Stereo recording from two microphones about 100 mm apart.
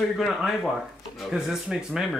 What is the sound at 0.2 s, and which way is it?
Speech, centre (ahead or behind).